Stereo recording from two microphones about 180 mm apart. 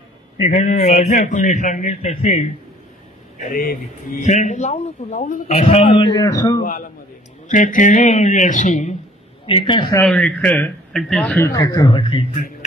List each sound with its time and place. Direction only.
0.4 s a man's voice: 40° left (ahead or behind)
5.9 s speech: 25° left (ahead or behind)
7.4 s a man's voice: 45° left (ahead or behind)
9.5 s speech: 25° left (ahead or behind)
9.9 s a man's voice: 5° left (ahead or behind)
11.3 s speech: 15° left (ahead or behind)